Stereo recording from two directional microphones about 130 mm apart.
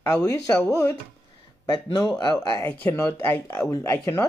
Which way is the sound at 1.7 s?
35° left (ahead or behind).